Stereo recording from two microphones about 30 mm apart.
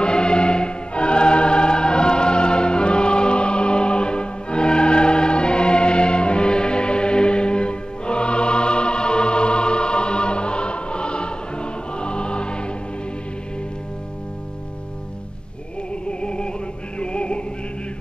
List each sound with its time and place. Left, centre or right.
0.0 s music: left
16.1 s music: left